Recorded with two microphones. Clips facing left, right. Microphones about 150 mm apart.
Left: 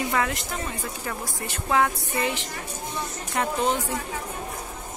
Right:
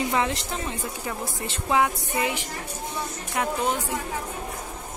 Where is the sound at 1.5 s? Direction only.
15° right (ahead or behind).